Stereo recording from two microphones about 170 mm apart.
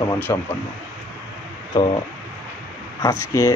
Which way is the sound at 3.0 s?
15° left (ahead or behind).